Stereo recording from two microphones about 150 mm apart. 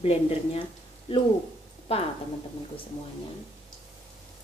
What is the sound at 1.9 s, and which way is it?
Speech, 40° left (ahead or behind).